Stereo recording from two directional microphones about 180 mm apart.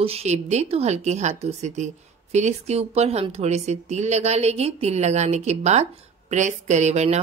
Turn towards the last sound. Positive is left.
turn(degrees=-40)  # may be behind; listen again after turning